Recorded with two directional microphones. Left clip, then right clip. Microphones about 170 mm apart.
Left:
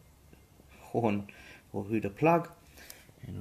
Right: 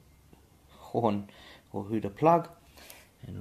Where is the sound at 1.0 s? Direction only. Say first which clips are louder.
Right 2 dB; 15° right (ahead or behind).